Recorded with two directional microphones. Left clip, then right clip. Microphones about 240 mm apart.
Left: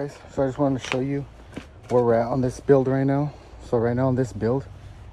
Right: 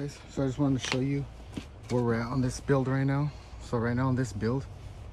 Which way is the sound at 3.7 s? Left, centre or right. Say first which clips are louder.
Left 9 dB; left.